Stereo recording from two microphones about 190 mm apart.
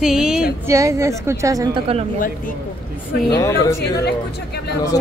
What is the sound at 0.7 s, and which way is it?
A woman's voice, 15° right (ahead or behind).